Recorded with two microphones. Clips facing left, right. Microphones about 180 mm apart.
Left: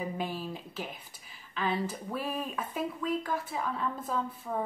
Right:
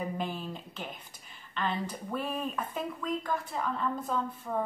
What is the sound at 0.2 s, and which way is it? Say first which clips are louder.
Speech: even; 5° left (ahead or behind).